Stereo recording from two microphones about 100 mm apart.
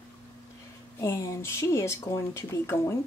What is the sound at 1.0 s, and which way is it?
Speech, 30° left (ahead or behind).